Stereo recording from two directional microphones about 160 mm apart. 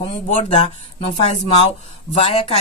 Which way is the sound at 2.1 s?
35° left (ahead or behind).